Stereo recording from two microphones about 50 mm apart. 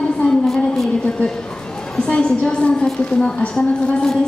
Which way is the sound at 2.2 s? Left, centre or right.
Left.